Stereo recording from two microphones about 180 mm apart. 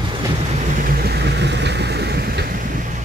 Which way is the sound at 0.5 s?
45° right (ahead or behind).